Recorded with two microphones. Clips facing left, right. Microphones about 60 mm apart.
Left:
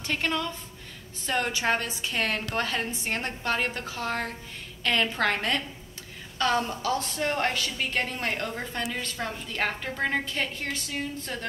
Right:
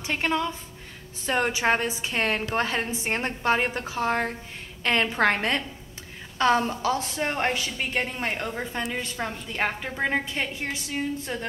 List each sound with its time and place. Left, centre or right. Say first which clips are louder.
0.0 s a woman's voice: right 3 dB; centre